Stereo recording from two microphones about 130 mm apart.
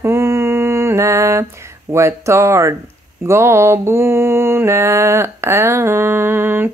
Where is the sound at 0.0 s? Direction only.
20° right (ahead or behind).